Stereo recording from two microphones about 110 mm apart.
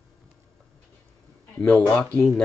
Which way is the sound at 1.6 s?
15° left (ahead or behind).